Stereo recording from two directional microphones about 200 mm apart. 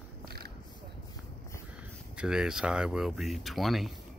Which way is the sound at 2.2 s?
5° right (ahead or behind).